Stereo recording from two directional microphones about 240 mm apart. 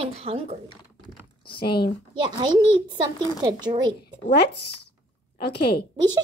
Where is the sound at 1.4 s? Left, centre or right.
Left.